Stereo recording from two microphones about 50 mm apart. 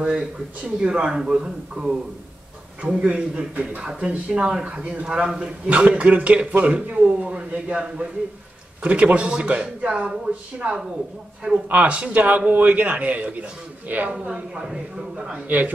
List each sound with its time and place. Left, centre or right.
0.8 s a man's voice: centre
2.8 s a man's voice: right
5.7 s a man's voice: right
11.4 s a man's voice: right
14.2 s a man's voice: centre
15.4 s a man's voice: right